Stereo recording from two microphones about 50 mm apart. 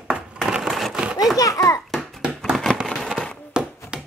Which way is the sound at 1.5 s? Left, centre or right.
Left.